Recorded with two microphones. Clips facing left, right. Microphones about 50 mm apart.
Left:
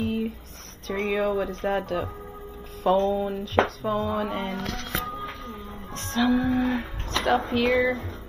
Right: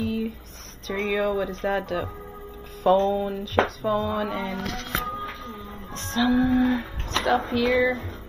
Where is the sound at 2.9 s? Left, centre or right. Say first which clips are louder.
Right 2 dB; right.